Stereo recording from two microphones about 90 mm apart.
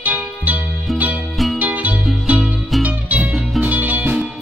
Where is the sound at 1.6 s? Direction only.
15° right (ahead or behind).